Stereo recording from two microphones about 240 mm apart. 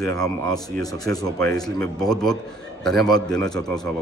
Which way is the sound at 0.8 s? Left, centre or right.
Centre.